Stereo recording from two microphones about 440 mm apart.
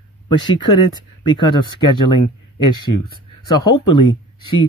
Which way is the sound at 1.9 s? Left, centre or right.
Left.